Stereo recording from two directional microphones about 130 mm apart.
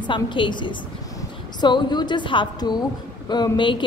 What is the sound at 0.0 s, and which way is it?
A woman's voice, 40° left (ahead or behind).